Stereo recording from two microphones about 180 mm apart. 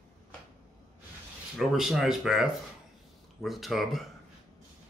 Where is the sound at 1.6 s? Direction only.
Centre (ahead or behind).